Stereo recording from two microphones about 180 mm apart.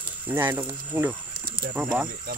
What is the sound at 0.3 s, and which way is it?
Speech, 10° right (ahead or behind).